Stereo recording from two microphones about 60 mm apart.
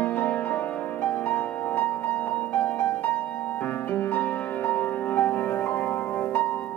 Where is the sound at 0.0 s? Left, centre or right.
Left.